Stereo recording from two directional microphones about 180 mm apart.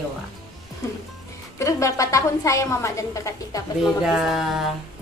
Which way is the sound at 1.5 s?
15° left (ahead or behind).